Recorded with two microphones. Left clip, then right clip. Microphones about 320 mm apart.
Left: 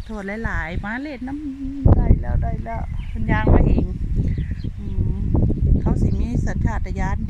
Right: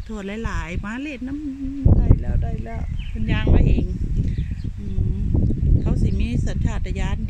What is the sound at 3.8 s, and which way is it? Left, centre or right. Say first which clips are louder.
Speech: left 2 dB; left.